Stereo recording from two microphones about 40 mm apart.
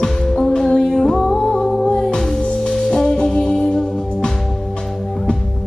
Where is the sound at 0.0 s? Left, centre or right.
Centre.